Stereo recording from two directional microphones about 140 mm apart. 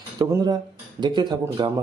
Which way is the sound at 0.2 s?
30° right (ahead or behind).